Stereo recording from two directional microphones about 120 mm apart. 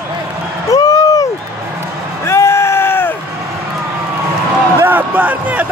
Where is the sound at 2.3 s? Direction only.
20° left (ahead or behind).